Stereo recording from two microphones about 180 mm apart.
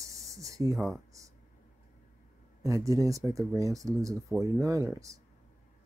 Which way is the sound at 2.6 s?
15° right (ahead or behind).